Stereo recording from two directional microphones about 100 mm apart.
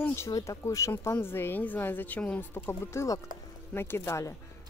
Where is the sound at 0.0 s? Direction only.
25° left (ahead or behind).